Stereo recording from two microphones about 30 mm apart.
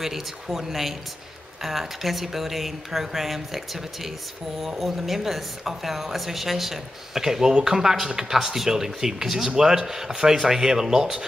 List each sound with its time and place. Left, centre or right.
0.0 s a woman's voice: centre